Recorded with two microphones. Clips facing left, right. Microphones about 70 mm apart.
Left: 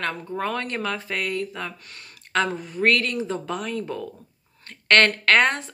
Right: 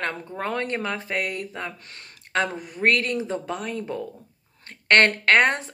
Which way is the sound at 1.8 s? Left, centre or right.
Right.